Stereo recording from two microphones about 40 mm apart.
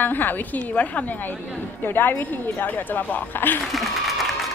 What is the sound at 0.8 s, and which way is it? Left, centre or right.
Speech, left.